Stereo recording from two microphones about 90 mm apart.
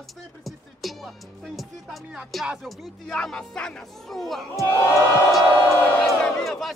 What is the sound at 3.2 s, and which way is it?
Speech, 10° left (ahead or behind).